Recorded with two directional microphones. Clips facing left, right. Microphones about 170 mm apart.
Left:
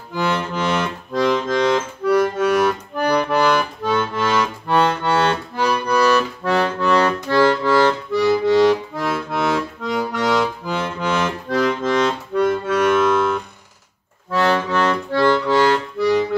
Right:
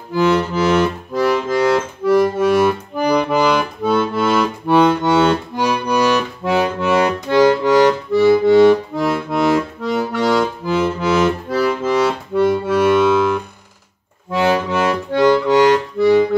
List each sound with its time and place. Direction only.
0.1 s accordion: 5° right (ahead or behind)
5.6 s music: 15° right (ahead or behind)
8.1 s accordion: centre (ahead or behind)